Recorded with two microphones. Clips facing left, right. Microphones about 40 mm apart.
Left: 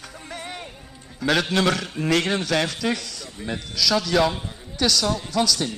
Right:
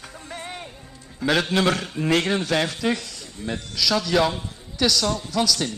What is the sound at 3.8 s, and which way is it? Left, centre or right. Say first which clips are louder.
A man's voice: left 1 dB; centre.